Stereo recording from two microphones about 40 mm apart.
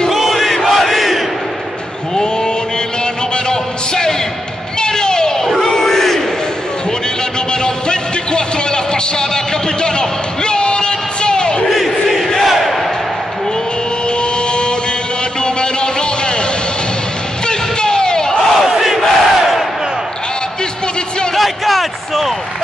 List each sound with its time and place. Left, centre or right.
0.1 s crowd: centre
3.4 s music: centre
4.7 s a sound: centre
5.7 s crowd: centre
7.6 s music: left
11.7 s crowd: centre
15.4 s music: left
17.5 s a sound: centre
18.7 s crowd: centre
21.4 s a sound: centre